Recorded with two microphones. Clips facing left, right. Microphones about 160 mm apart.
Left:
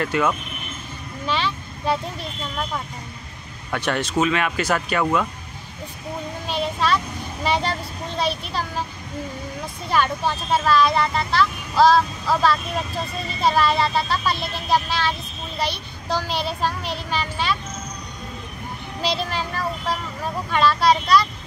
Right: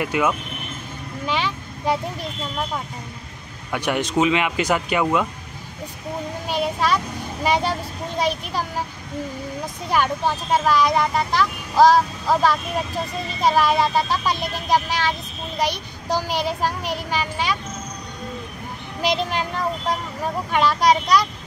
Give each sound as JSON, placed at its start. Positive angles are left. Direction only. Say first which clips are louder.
{"t": 0.0, "sound": "speech", "louder": "even", "side_deg": -10}
{"t": 1.2, "sound": "vehicle", "louder": "even", "side_deg": -15}
{"t": 3.7, "sound": "speech", "louder": "right 1 dB", "side_deg": -15}
{"t": 6.4, "sound": "speech", "louder": "right 1 dB", "side_deg": -10}
{"t": 9.8, "sound": "speech", "louder": "right 1 dB", "side_deg": -15}
{"t": 18.9, "sound": "speech", "louder": "right 3 dB", "side_deg": -15}